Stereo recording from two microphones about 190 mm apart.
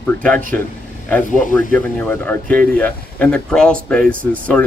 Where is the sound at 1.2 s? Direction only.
45° left (ahead or behind).